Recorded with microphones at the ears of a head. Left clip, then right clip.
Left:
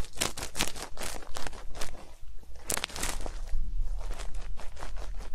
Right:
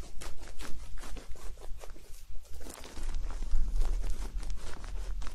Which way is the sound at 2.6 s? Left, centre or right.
Left.